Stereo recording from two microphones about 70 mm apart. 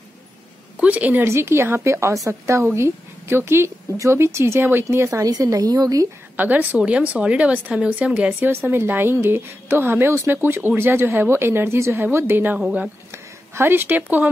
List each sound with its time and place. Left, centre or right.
0.7 s speech: centre
1.2 s a woman's voice: right
5.2 s a woman's voice: right
6.3 s speech: right
8.5 s a woman's voice: right
12.5 s speech: centre
13.1 s speech: right